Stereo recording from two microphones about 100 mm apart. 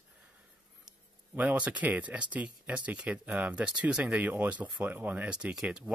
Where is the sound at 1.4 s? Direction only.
15° right (ahead or behind).